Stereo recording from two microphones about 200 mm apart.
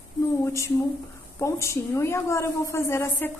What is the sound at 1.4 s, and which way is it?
A woman's voice, 15° left (ahead or behind).